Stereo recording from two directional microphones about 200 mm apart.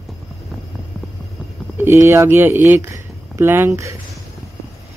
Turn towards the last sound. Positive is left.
turn(degrees=-15)  # may be behind; listen again after turning